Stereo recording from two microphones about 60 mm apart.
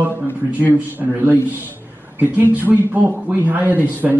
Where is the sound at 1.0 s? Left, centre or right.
Right.